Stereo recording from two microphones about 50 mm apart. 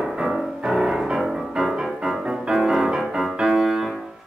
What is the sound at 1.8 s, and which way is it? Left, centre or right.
Music, centre.